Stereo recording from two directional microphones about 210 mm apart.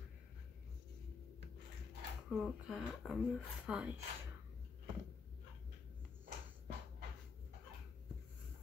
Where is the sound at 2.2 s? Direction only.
5° right (ahead or behind).